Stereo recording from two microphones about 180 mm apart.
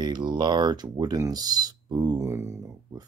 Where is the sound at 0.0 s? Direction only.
25° right (ahead or behind).